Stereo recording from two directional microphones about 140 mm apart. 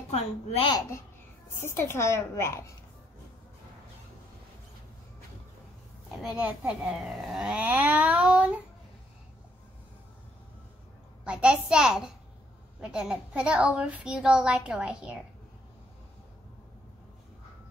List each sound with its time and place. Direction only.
0.1 s a woman's voice: 50° left (ahead or behind)
0.7 s a woman's voice: 25° left (ahead or behind)
6.2 s a woman's voice: 10° right (ahead or behind)
11.2 s a child's voice: 5° right (ahead or behind)